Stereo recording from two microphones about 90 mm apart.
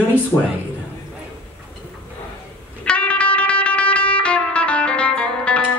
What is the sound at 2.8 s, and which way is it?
Music, 15° left (ahead or behind).